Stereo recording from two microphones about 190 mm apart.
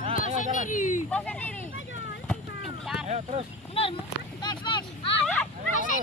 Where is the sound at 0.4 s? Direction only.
40° left (ahead or behind).